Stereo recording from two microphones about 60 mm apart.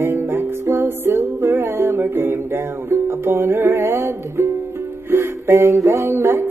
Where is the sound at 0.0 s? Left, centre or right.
Right.